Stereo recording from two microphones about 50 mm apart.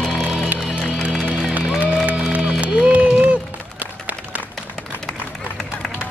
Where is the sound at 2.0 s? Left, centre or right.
Right.